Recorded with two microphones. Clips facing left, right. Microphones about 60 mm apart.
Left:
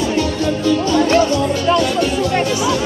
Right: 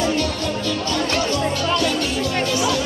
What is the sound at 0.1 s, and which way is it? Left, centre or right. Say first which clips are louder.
Music: left 5 dB; left.